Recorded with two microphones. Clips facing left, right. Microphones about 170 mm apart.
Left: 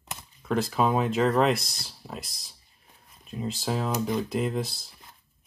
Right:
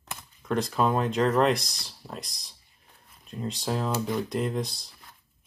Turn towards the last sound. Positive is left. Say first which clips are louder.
# left 1 dB
turn(degrees=0)  # may be behind; listen again after turning